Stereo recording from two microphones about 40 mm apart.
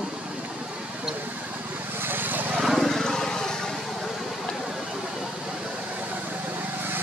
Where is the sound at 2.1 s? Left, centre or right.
Right.